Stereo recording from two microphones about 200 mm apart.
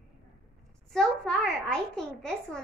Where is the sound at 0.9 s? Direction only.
5° left (ahead or behind).